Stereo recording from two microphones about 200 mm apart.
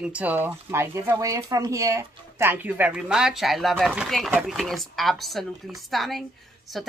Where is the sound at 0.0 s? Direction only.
5° right (ahead or behind).